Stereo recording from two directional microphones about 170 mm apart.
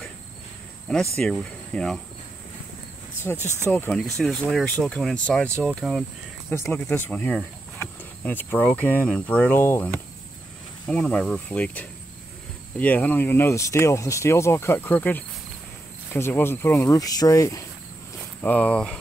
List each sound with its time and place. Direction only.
1.1 s speech: 5° left (ahead or behind)
3.2 s speech: 15° left (ahead or behind)
6.5 s speech: 10° left (ahead or behind)
18.4 s speech: 10° left (ahead or behind)